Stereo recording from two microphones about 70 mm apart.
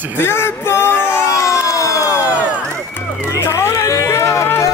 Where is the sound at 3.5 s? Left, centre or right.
Left.